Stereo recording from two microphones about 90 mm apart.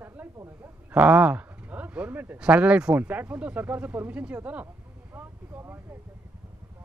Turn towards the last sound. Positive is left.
turn(degrees=-25)  # may be behind; listen again after turning